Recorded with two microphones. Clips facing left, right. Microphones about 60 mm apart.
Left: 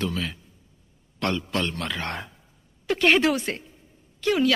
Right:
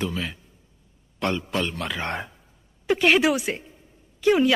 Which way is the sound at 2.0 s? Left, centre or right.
Centre.